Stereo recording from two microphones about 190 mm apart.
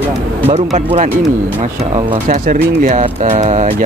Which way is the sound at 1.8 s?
30° right (ahead or behind).